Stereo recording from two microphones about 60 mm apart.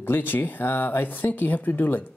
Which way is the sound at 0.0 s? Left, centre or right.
Left.